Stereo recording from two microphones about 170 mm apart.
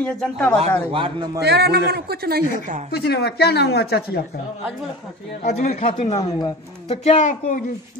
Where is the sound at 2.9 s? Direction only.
70° left (ahead or behind).